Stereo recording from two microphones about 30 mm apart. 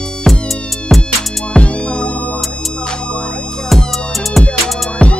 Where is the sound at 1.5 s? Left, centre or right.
Left.